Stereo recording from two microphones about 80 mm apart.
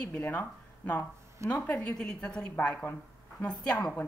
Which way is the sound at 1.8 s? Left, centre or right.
Centre.